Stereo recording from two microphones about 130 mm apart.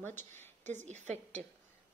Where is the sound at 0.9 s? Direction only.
65° right (ahead or behind).